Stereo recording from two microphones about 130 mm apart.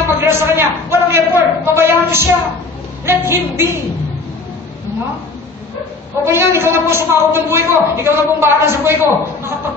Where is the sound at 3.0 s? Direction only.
20° right (ahead or behind).